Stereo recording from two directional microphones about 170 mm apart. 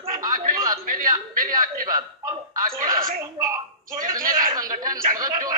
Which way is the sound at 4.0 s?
55° right (ahead or behind).